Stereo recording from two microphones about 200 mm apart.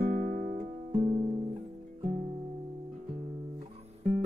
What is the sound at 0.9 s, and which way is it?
Music, 25° right (ahead or behind).